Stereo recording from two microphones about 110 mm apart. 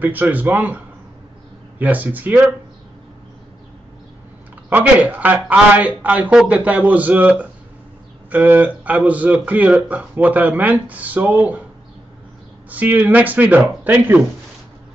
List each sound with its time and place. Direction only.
0.0 s speech: 15° right (ahead or behind)
1.8 s speech: 15° right (ahead or behind)
4.6 s speech: 15° right (ahead or behind)
12.6 s speech: 15° right (ahead or behind)